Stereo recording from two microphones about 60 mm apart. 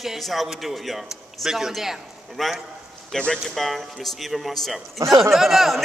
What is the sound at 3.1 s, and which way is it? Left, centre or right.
A man's voice, centre.